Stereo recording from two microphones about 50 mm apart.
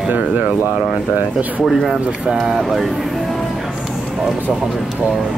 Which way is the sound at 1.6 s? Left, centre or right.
Centre.